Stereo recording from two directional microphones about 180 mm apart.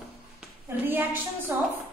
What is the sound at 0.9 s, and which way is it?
Speech, 10° right (ahead or behind).